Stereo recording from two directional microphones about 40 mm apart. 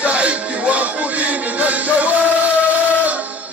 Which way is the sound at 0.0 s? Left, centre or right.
Right.